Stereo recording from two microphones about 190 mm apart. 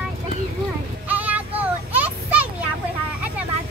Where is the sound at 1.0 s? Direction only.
10° right (ahead or behind).